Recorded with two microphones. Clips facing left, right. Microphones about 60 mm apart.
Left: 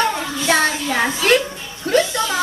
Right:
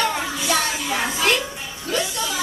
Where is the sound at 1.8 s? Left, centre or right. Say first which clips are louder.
Left 7 dB; left.